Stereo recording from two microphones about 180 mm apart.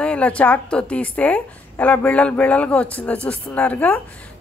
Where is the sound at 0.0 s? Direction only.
5° left (ahead or behind).